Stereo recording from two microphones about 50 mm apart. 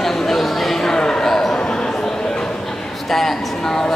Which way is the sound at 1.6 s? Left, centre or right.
Centre.